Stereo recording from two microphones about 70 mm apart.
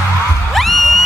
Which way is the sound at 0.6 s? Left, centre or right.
Centre.